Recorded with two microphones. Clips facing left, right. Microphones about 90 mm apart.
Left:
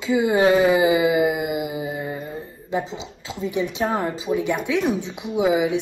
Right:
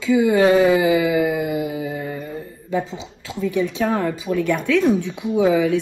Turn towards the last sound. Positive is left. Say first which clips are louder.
# right 3 dB
turn(degrees=15)  # may be behind; listen again after turning